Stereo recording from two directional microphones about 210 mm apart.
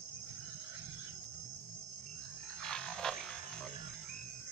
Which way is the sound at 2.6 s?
5° left (ahead or behind).